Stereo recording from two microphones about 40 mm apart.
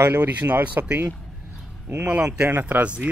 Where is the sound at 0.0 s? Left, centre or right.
Right.